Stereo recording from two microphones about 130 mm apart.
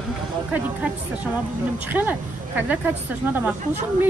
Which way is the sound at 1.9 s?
15° right (ahead or behind).